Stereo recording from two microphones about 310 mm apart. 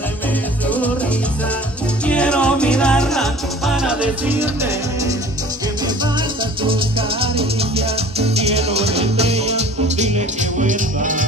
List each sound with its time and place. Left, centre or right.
0.7 s music: centre
2.0 s music: centre
6.6 s music: centre